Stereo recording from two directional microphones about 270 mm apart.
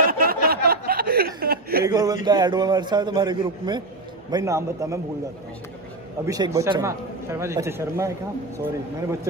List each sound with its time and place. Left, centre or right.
0.0 s chuckle: right
1.9 s speech: centre
6.2 s speech: centre